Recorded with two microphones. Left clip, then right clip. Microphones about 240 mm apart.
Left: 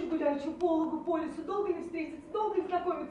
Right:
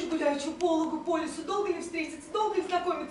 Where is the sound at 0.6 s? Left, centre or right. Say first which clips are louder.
Right 2 dB; left.